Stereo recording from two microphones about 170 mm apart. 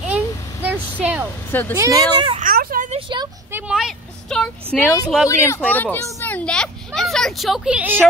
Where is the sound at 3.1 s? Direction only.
25° right (ahead or behind).